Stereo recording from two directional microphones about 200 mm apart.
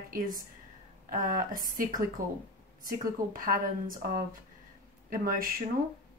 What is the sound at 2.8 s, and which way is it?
Speech, 45° right (ahead or behind).